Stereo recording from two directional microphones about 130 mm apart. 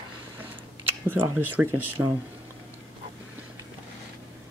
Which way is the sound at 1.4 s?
15° right (ahead or behind).